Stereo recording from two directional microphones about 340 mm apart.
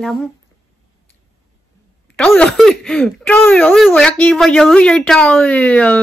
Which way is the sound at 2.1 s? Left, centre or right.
Centre.